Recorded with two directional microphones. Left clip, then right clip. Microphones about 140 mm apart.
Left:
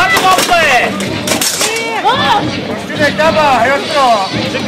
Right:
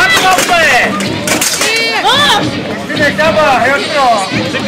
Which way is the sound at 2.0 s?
50° right (ahead or behind).